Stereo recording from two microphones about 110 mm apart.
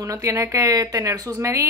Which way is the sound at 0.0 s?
30° right (ahead or behind).